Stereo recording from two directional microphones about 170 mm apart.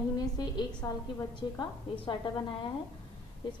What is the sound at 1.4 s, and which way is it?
Speech, 25° left (ahead or behind).